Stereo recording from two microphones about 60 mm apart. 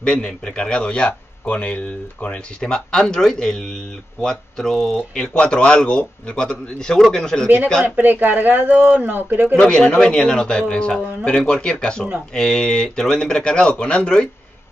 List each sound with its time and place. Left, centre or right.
0.0 s speech: centre
5.1 s speech: centre
7.4 s speech: right
9.6 s speech: centre